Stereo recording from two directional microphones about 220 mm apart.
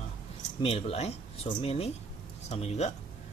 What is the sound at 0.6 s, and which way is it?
Speech, 25° left (ahead or behind).